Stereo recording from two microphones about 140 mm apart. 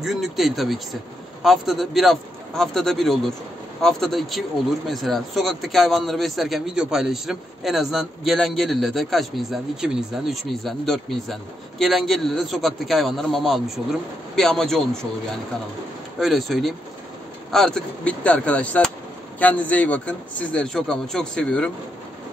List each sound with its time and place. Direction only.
0.0 s speech: centre (ahead or behind)
16.2 s a man's voice: centre (ahead or behind)